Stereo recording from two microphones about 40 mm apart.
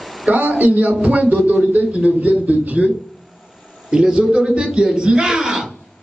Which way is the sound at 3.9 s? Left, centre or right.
Centre.